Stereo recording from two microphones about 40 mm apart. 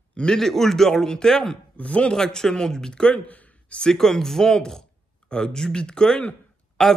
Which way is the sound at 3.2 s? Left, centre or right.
Left.